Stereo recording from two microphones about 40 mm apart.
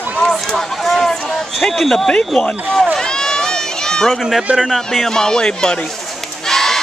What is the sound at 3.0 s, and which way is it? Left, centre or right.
Run, centre.